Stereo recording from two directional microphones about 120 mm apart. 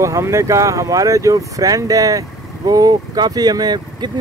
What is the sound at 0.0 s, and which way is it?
Speech, 25° right (ahead or behind).